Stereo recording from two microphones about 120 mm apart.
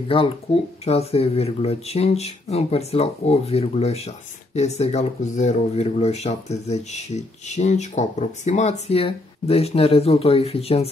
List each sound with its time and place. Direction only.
0.1 s speech: 50° left (ahead or behind)